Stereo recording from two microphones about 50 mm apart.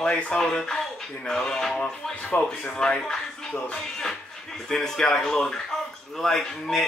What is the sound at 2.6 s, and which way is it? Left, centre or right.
Speech, centre.